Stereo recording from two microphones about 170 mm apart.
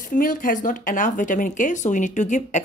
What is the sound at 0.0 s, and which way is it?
A woman's voice, 55° left (ahead or behind).